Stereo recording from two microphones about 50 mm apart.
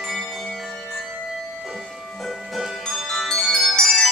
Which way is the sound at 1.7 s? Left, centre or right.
Centre.